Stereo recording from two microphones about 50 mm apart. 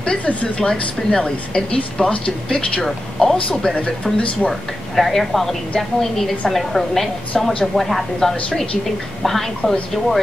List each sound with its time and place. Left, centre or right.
0.0 s speech: left
2.8 s speech: centre
3.7 s speech: left
4.4 s a woman's voice: centre